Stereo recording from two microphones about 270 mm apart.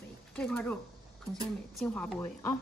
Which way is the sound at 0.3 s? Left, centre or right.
Centre.